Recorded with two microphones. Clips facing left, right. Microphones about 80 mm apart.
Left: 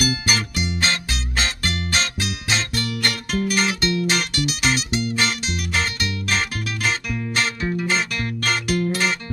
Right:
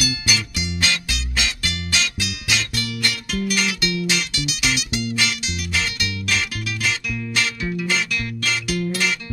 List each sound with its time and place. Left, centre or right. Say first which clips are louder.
0.0 s music: left 3 dB; left